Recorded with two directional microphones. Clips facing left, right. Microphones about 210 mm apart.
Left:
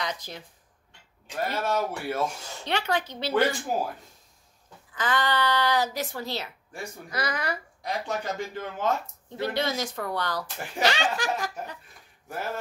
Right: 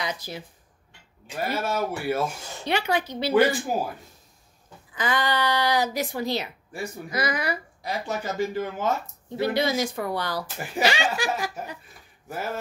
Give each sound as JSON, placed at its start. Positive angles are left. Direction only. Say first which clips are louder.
{"t": 0.0, "sound": "speech", "louder": "right 2 dB", "side_deg": -10}
{"t": 4.9, "sound": "speech", "louder": "right 1 dB", "side_deg": -10}